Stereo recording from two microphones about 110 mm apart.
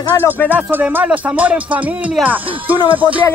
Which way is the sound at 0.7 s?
15° right (ahead or behind).